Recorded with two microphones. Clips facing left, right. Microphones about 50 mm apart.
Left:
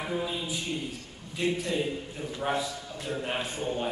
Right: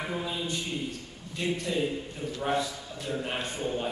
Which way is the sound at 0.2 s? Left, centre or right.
Centre.